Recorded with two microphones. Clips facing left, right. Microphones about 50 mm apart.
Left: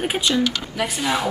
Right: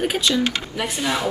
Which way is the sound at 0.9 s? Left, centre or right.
Centre.